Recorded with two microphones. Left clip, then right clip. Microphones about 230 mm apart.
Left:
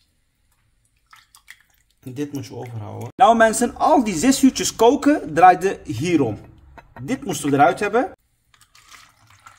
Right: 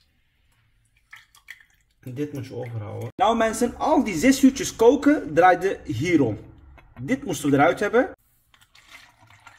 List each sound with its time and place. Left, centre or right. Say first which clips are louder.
3.2 s speech: left 7 dB; left; by 8.1 s centre